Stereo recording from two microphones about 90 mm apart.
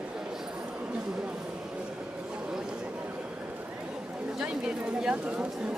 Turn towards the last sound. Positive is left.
turn(degrees=-10)  # may be behind; listen again after turning